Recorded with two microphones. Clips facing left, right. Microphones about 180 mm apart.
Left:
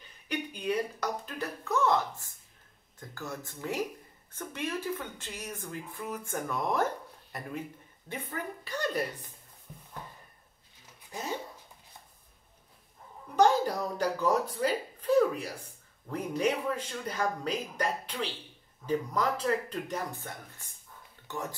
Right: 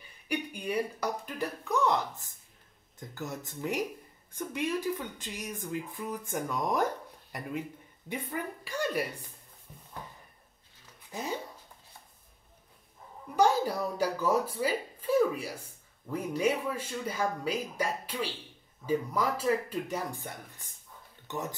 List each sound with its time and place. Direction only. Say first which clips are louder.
0.3 s speech: left 1 dB; 10° right (ahead or behind)
8.1 s speech: right 2 dB; 10° right (ahead or behind)
13.4 s speech: left 1 dB; 10° right (ahead or behind)